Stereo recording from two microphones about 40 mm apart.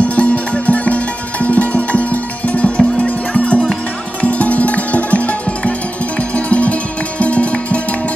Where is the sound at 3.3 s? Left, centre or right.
Left.